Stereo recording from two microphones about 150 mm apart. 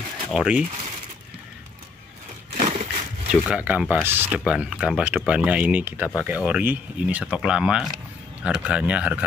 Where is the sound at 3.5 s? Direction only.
10° right (ahead or behind).